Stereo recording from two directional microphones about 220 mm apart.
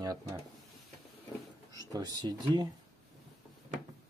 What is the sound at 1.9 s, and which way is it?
Speech, 20° right (ahead or behind).